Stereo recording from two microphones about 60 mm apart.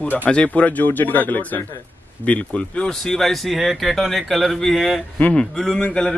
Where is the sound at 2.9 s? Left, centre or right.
Centre.